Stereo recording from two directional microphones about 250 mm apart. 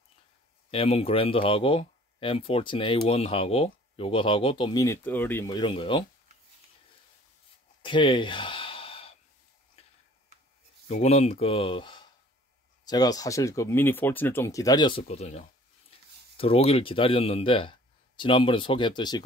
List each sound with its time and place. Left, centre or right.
0.7 s speech: left
7.8 s gasp: centre
9.8 s tick-tock: left
10.9 s speech: left